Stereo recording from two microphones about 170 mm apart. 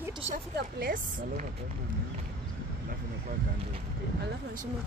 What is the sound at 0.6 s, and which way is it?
Speech, 60° right (ahead or behind).